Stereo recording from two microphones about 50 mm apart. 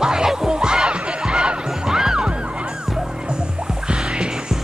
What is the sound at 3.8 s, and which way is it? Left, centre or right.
Music, centre.